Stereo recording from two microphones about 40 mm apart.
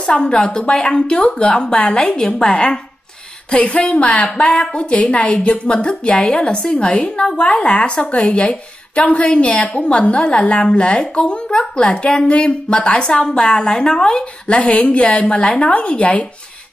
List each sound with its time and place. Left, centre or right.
0.0 s a woman's voice: left
2.1 s a woman's voice: left
15.7 s a woman's voice: left